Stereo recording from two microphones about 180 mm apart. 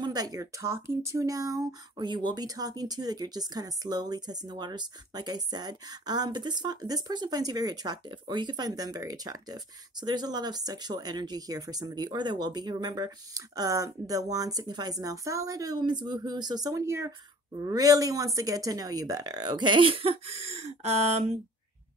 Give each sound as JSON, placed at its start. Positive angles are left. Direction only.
{"t": 0.0, "sound": "speech", "side_deg": -20}